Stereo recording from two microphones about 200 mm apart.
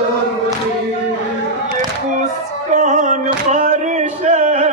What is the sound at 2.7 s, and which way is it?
Music, 40° right (ahead or behind).